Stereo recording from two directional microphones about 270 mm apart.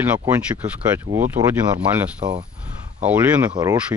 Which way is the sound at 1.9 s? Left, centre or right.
Centre.